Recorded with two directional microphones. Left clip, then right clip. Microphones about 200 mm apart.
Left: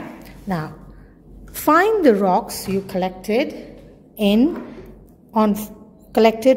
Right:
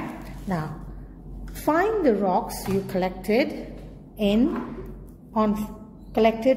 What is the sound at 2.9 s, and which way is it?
Speech, 25° left (ahead or behind).